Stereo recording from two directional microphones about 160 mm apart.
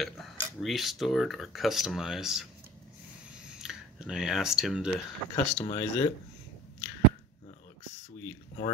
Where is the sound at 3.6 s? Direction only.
5° right (ahead or behind).